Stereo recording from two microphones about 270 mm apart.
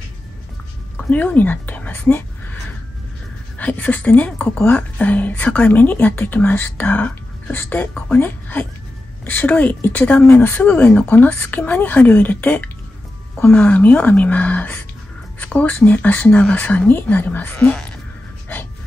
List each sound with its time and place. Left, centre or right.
1.1 s a woman's voice: centre
3.5 s a woman's voice: centre